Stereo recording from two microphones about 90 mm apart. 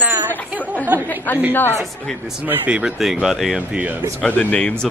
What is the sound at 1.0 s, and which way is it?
Speech, 20° left (ahead or behind).